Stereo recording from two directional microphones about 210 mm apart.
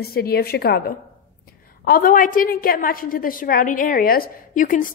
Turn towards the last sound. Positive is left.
turn(degrees=40)  # may be behind; listen again after turning